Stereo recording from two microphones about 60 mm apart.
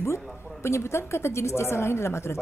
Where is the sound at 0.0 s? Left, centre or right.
Left.